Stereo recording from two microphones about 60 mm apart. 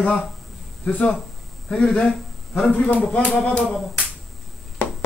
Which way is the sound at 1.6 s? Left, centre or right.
Centre.